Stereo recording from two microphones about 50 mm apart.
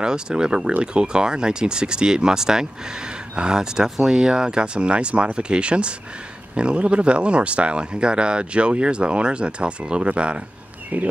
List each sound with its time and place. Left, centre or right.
0.0 s speech: centre; by 11.1 s right